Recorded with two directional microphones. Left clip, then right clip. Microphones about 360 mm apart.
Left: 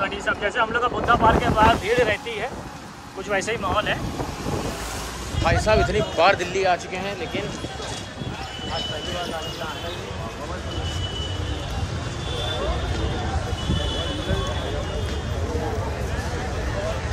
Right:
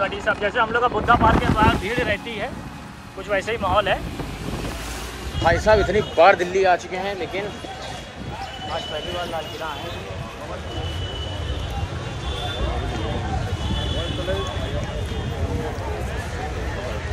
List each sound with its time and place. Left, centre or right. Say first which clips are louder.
0.0 s speech: right 2 dB; centre
3.3 s speech: right 2 dB; centre
5.4 s speech: right 3 dB; right